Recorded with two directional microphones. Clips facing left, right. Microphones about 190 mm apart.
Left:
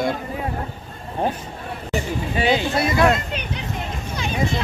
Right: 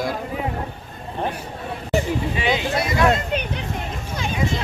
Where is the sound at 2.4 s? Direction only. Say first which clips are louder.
Left 5 dB; 35° left (ahead or behind).